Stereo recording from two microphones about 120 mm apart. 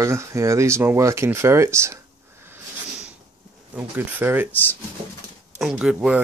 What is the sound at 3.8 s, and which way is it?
Speech, 15° right (ahead or behind).